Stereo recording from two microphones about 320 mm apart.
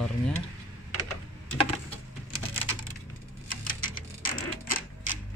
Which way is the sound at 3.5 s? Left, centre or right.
Left.